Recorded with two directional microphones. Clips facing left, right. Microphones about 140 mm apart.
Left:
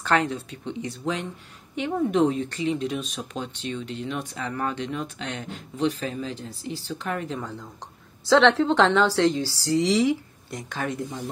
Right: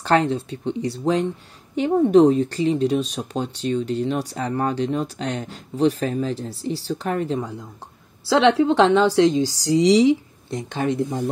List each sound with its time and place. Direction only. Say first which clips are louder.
0.0 s speech: right 5 dB; 30° right (ahead or behind)
7.3 s a woman's voice: right 6 dB; 10° right (ahead or behind)